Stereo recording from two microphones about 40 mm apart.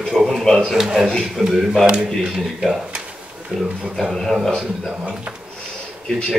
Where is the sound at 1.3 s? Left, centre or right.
Centre.